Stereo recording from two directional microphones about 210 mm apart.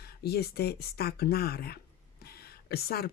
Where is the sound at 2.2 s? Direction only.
50° left (ahead or behind).